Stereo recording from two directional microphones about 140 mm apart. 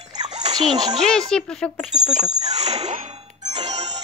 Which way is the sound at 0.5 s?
30° right (ahead or behind).